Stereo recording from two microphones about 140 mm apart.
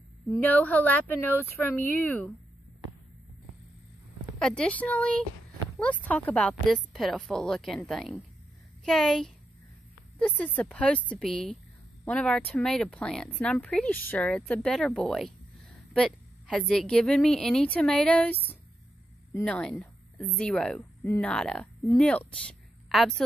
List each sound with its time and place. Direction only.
0.5 s speech: 10° left (ahead or behind)
4.4 s a woman's voice: 5° left (ahead or behind)
21.0 s speech: 15° left (ahead or behind)
21.3 s speech: 5° left (ahead or behind)